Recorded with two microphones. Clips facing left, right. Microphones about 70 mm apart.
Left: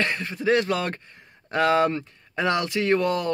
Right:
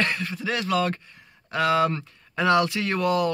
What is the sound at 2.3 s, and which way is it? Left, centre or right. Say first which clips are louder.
Speech: right 3 dB; left.